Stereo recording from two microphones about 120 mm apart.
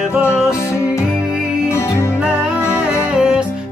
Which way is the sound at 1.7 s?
25° left (ahead or behind).